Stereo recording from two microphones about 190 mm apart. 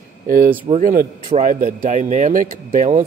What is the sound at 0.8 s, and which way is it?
Speech, 50° right (ahead or behind).